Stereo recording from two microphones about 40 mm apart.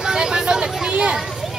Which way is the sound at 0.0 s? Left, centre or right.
Centre.